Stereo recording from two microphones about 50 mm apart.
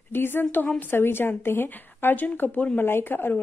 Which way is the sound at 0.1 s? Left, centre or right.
Left.